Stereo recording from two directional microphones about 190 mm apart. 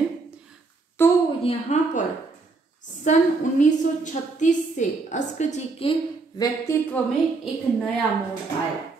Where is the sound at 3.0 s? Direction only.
40° left (ahead or behind); by 7.0 s 15° left (ahead or behind).